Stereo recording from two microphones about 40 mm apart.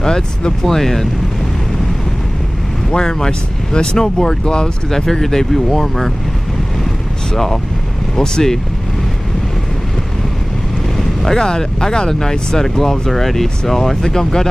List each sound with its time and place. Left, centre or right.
0.0 s speech: centre
0.7 s speech: centre
2.9 s speech: centre
8.2 s speech: centre
11.0 s speech: centre